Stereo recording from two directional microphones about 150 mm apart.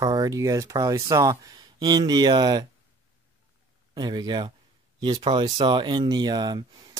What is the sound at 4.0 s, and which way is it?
Speech, 30° right (ahead or behind).